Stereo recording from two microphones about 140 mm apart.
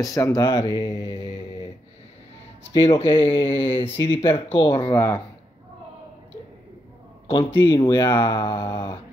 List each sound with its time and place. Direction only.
0.0 s speech: 25° left (ahead or behind)
2.7 s mantra: 30° left (ahead or behind)
3.8 s speech: 20° left (ahead or behind)
4.2 s mantra: 40° left (ahead or behind)
4.9 s speech: 20° left (ahead or behind)
7.6 s speech: 30° left (ahead or behind)
8.5 s mantra: 35° left (ahead or behind)